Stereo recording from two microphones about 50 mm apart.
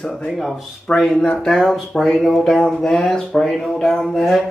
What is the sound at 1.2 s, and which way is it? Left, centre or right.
Speech, left.